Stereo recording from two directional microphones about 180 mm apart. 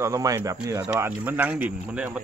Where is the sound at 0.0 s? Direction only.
20° right (ahead or behind).